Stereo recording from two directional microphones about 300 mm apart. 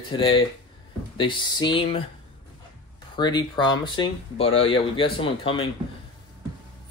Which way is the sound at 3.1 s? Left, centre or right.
Centre.